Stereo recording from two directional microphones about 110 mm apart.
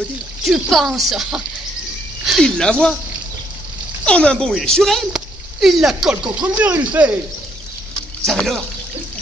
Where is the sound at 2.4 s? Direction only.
10° left (ahead or behind).